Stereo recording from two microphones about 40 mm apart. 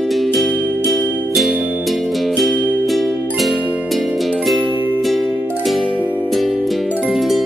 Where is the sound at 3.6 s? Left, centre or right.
Right.